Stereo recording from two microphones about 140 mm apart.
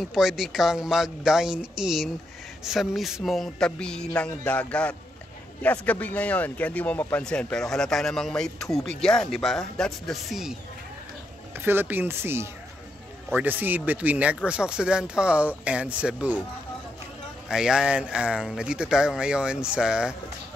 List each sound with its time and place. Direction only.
0.0 s a man's voice: 5° right (ahead or behind)
11.6 s speech: 15° right (ahead or behind)
17.5 s speech: 5° right (ahead or behind)